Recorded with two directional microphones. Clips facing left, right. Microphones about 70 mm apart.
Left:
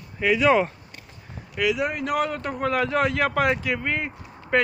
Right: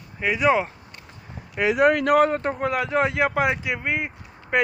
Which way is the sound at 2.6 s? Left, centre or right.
Centre.